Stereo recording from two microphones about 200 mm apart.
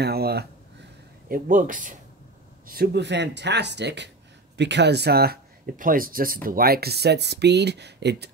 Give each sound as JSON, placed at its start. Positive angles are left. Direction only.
{"t": 0.0, "sound": "speech", "side_deg": -50}
{"t": 1.3, "sound": "speech", "side_deg": -40}